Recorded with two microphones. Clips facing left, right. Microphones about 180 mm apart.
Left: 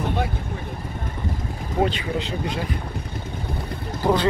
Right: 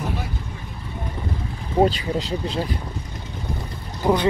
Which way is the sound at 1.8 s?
35° right (ahead or behind).